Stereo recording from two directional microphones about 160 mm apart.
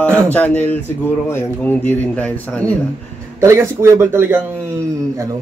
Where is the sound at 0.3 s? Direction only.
10° left (ahead or behind).